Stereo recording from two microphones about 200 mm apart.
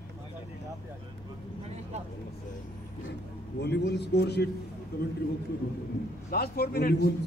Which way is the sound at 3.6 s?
55° left (ahead or behind).